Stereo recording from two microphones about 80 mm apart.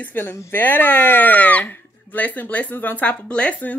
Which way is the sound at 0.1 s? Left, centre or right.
Left.